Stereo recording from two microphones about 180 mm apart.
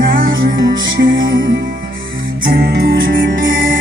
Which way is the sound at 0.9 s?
50° right (ahead or behind).